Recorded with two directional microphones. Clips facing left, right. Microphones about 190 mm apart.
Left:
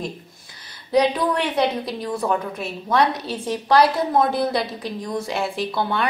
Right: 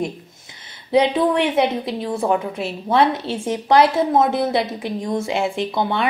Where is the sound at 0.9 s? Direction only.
25° right (ahead or behind).